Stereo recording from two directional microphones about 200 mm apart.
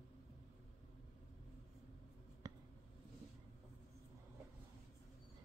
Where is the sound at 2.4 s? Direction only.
20° right (ahead or behind).